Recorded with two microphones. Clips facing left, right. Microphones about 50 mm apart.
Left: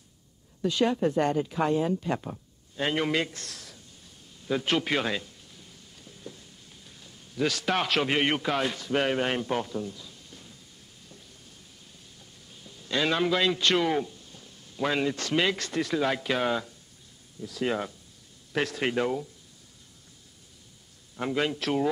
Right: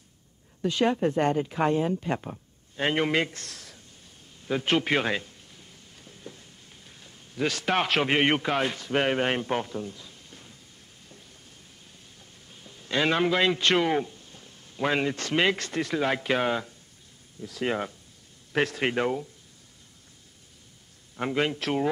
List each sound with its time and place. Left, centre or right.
0.7 s speech: right
2.7 s a man's voice: right
4.5 s a sound: right
6.9 s a man's voice: right
12.6 s a man's voice: right
21.2 s speech: right